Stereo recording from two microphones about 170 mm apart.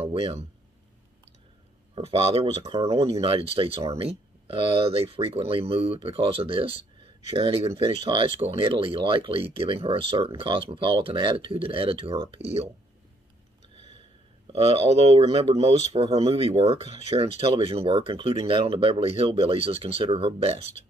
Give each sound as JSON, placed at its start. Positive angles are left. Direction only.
{"t": 0.0, "sound": "speech", "side_deg": -35}
{"t": 2.0, "sound": "speech", "side_deg": -35}
{"t": 14.5, "sound": "speech", "side_deg": -35}